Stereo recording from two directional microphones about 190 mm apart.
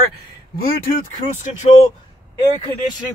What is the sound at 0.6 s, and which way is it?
Speech, 50° left (ahead or behind).